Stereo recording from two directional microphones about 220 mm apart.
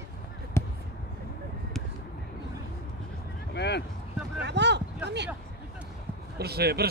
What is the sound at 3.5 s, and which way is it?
Vehicle, 50° left (ahead or behind).